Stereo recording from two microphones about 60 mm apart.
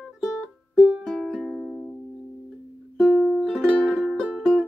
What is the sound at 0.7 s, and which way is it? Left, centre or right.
Music, right.